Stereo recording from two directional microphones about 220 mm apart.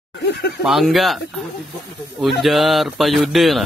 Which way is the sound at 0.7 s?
Centre (ahead or behind).